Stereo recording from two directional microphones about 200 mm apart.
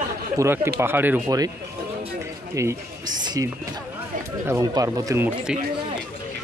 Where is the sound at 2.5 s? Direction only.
15° right (ahead or behind).